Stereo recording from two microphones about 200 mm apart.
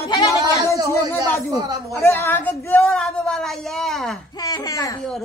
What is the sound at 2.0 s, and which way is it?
Speech, 15° left (ahead or behind).